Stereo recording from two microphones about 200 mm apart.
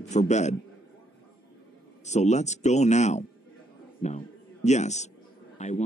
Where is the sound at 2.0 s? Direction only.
35° left (ahead or behind).